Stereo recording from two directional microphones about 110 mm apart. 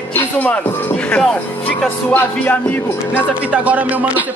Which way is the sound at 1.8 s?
15° left (ahead or behind).